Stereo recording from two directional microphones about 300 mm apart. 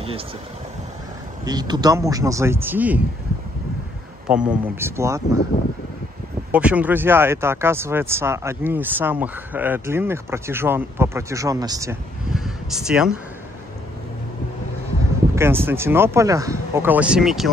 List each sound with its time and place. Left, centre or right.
1.4 s speech: centre
4.3 s speech: centre
6.5 s speech: centre
15.3 s speech: centre